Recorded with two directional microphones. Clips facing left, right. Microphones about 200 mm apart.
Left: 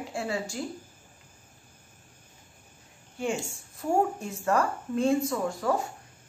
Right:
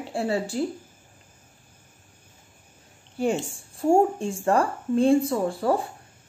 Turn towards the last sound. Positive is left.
turn(degrees=-30)  # may be behind; listen again after turning